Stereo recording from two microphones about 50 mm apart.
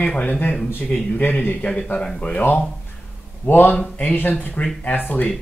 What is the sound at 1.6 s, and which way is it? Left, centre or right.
Speech, centre.